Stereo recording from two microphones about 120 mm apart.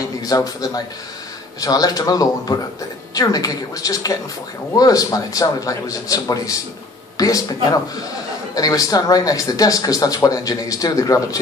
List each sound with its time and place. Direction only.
0.2 s speech: 30° left (ahead or behind)